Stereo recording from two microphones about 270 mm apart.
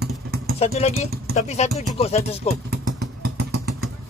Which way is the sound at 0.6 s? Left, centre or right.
Left.